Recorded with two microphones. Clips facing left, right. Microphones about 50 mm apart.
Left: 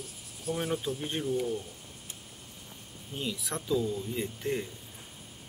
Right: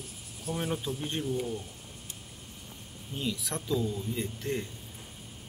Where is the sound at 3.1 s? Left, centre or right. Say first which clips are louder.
Right 1 dB; centre.